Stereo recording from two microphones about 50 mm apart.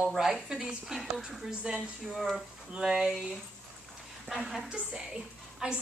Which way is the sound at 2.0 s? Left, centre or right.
Centre.